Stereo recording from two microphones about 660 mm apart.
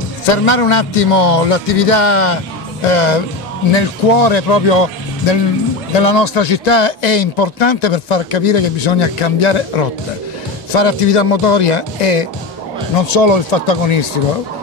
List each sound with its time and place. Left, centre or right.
0.3 s speech: left
3.7 s a man's voice: left
12.9 s a man's voice: left